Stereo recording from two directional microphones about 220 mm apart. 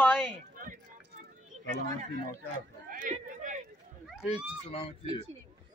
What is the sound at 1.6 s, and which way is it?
Speech, 35° right (ahead or behind).